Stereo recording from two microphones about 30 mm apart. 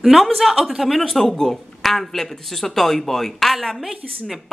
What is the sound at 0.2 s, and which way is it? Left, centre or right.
Speech, centre.